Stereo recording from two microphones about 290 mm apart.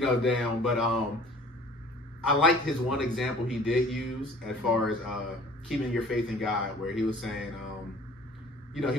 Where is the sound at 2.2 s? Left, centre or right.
Centre.